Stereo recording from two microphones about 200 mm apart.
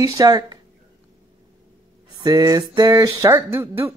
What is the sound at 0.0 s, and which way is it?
Speech, 20° right (ahead or behind).